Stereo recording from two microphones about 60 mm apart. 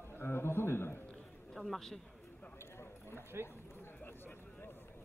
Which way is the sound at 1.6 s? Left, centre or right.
Centre.